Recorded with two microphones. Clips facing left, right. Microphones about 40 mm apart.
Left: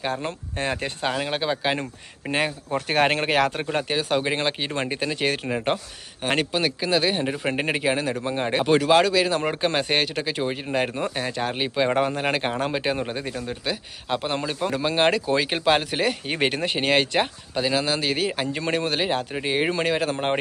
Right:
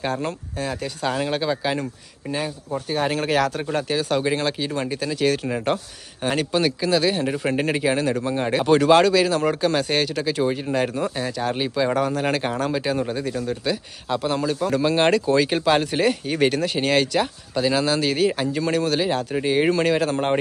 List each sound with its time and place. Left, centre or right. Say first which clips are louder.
0.0 s speech: right 2 dB; centre
0.3 s speech: even; left
1.1 s speech: right 2 dB; centre
1.4 s speech: right 1 dB; left
2.3 s speech: left 2 dB; left
3.3 s speech: right 1 dB; left
8.7 s speech: right 3 dB; centre
9.3 s speech: right 3 dB; centre
14.7 s speech: right 2 dB; centre
16.3 s speech: right 3 dB; left
17.6 s speech: right 3 dB; centre
18.6 s speech: right 3 dB; left